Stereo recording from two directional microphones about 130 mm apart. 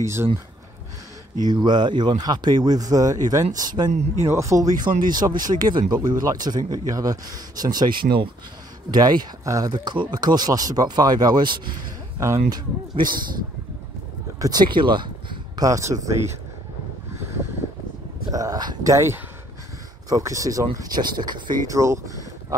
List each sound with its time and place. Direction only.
0.0 s speech: 20° right (ahead or behind)
1.4 s speech: 35° right (ahead or behind)
14.4 s speech: 30° right (ahead or behind)
18.3 s speech: 30° right (ahead or behind)
21.6 s speech: 25° right (ahead or behind)